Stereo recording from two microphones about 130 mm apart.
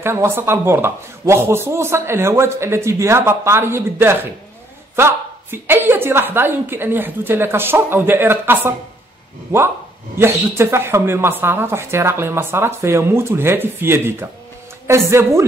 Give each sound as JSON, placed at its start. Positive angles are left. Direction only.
{"t": 0.0, "sound": "a woman's voice", "side_deg": -20}